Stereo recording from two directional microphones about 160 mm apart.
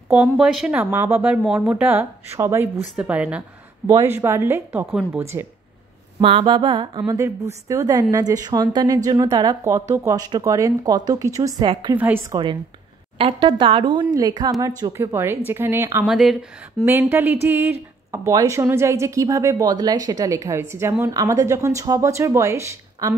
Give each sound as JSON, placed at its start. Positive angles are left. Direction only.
{"t": 0.1, "sound": "speech", "side_deg": -5}
{"t": 6.2, "sound": "a woman's voice", "side_deg": -30}
{"t": 12.0, "sound": "speech", "side_deg": -15}
{"t": 13.2, "sound": "a woman's voice", "side_deg": -30}
{"t": 16.2, "sound": "speech", "side_deg": 0}
{"t": 16.8, "sound": "a woman's voice", "side_deg": -15}